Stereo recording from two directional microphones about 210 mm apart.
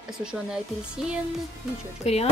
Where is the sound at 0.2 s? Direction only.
5° right (ahead or behind).